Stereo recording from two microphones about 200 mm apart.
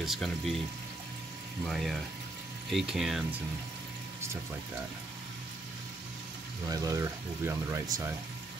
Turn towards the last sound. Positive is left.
turn(degrees=-15)  # may be behind; listen again after turning